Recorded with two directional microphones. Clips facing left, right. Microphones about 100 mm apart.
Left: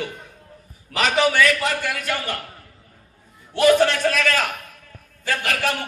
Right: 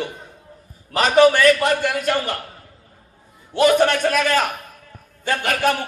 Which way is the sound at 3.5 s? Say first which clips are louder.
Right 1 dB; 25° right (ahead or behind).